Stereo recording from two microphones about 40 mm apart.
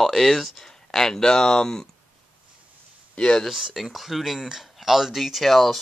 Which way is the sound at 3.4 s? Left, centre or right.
Centre.